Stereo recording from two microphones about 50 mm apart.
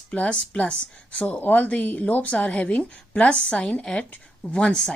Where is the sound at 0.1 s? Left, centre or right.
Left.